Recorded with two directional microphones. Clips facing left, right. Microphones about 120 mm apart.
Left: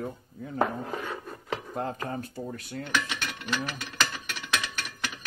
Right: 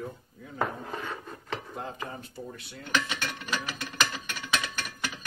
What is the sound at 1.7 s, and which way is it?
A man's voice, 45° left (ahead or behind).